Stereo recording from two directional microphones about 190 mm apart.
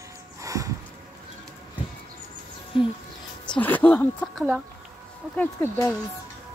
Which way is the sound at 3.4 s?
10° left (ahead or behind).